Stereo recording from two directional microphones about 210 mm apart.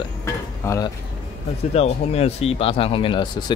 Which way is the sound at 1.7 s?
30° left (ahead or behind).